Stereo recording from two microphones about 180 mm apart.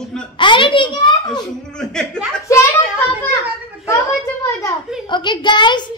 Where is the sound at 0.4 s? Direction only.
25° left (ahead or behind).